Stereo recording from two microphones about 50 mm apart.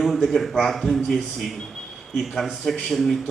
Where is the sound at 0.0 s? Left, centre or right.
Centre.